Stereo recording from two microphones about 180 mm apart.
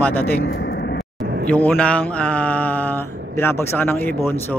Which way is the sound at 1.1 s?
65° right (ahead or behind).